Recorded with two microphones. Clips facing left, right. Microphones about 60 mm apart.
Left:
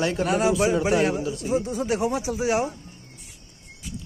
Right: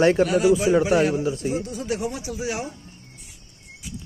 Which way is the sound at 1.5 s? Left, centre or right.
Left.